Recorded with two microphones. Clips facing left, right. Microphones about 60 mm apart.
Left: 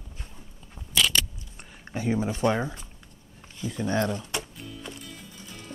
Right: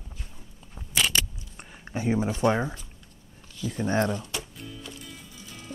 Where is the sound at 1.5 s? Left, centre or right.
Centre.